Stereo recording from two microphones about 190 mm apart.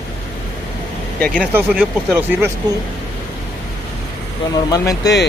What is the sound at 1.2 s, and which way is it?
Speech, 5° left (ahead or behind).